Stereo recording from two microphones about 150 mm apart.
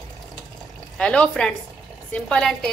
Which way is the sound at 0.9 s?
5° left (ahead or behind).